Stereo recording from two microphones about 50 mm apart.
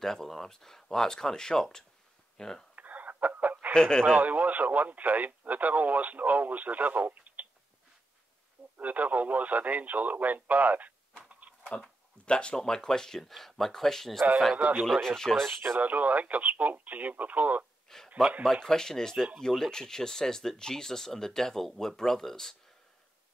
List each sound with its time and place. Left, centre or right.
0.0 s speech: centre
2.7 s chicken: right
3.7 s speech: centre
4.0 s speech: right
8.7 s speech: right
11.2 s a sound: right
12.3 s speech: centre
15.8 s speech: right
17.8 s a sound: centre
18.4 s speech: centre